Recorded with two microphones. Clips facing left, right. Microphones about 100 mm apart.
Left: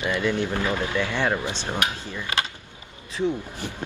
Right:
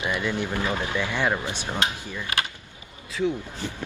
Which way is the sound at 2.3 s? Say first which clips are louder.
Left 1 dB; 25° left (ahead or behind).